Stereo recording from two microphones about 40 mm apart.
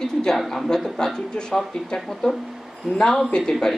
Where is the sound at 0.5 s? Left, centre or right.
Centre.